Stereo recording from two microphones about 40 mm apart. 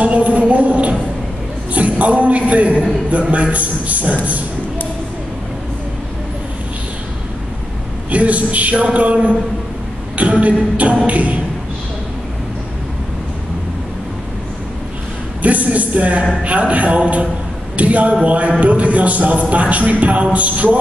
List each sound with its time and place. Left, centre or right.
0.0 s a sound: right
1.7 s a man's voice: right
3.1 s music: right
8.1 s music: right
15.4 s music: right
17.7 s speech: right
18.2 s music: right